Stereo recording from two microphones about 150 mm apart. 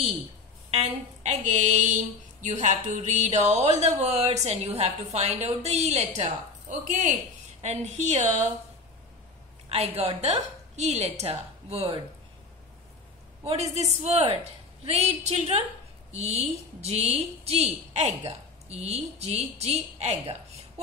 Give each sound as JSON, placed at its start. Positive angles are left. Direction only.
{"t": 0.7, "sound": "speech", "side_deg": -45}
{"t": 6.8, "sound": "speech", "side_deg": -60}
{"t": 7.6, "sound": "speech", "side_deg": -45}
{"t": 9.7, "sound": "speech", "side_deg": -45}
{"t": 13.5, "sound": "speech", "side_deg": -45}